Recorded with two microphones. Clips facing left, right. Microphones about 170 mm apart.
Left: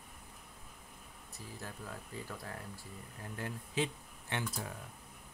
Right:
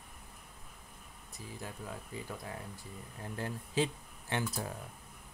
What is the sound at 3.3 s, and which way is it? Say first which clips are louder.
Speech: right 4 dB; 30° right (ahead or behind).